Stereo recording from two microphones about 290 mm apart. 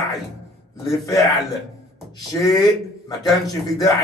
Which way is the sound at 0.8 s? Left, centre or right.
Centre.